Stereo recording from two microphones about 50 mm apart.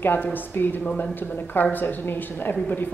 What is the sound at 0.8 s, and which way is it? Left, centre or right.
Speech, centre.